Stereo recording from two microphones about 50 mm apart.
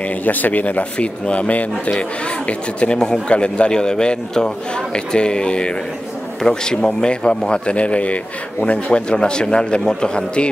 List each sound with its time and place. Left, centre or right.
0.2 s a man's voice: left; by 10.5 s centre